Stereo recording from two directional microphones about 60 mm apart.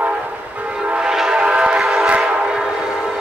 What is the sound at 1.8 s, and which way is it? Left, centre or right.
Train, centre.